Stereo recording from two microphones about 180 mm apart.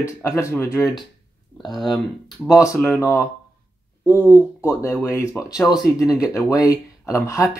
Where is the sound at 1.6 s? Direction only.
Centre (ahead or behind).